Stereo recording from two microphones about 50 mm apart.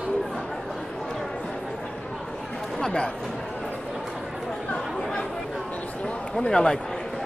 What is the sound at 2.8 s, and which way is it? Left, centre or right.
Chatter, centre.